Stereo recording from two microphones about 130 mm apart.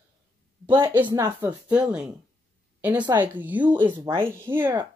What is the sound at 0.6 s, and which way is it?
Speech, 40° right (ahead or behind).